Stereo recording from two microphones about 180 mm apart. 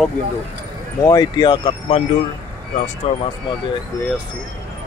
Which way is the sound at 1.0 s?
20° left (ahead or behind).